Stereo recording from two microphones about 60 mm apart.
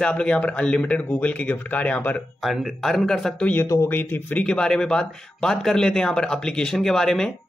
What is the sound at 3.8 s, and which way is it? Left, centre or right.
Speech, left.